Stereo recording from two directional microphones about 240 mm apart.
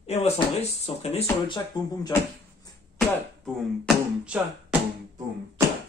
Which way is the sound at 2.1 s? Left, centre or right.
Centre.